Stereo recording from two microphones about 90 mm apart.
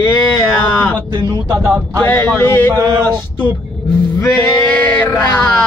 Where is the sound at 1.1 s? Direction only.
50° right (ahead or behind).